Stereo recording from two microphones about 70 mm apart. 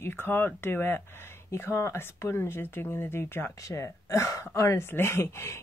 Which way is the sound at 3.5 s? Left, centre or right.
Left.